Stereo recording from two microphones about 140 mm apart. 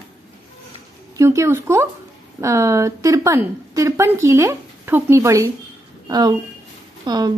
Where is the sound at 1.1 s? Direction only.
20° right (ahead or behind).